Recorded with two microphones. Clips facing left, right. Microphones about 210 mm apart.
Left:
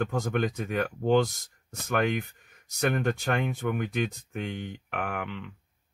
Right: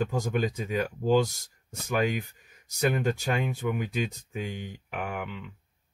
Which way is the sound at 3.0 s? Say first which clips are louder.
Even; 60° left (ahead or behind).